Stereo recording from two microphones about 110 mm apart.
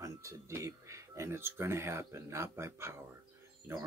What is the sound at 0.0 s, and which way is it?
Speech, 25° right (ahead or behind).